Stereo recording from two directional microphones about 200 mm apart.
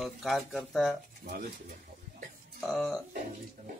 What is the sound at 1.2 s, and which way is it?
Speech, 45° right (ahead or behind).